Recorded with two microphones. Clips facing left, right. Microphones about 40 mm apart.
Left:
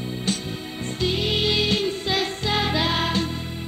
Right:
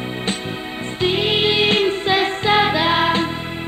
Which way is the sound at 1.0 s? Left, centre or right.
Right.